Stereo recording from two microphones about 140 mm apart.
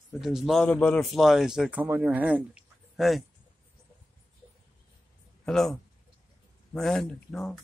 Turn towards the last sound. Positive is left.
turn(degrees=0)  # may be behind; listen again after turning